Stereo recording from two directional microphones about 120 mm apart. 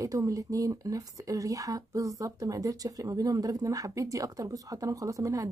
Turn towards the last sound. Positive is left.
turn(degrees=-30)  # may be behind; listen again after turning